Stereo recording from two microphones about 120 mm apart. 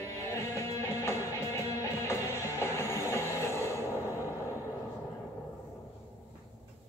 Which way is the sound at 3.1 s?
25° left (ahead or behind).